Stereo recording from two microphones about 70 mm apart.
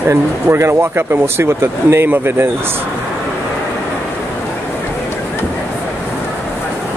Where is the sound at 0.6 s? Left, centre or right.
Right.